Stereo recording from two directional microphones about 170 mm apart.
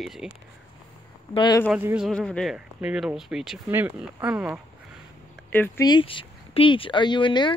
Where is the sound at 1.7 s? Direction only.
10° right (ahead or behind).